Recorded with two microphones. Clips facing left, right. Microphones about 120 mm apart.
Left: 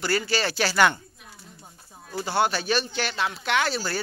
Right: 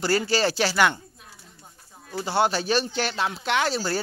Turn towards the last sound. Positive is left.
turn(degrees=-30)  # may be behind; listen again after turning